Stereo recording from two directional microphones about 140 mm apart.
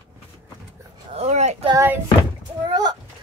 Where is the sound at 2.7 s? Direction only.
30° right (ahead or behind).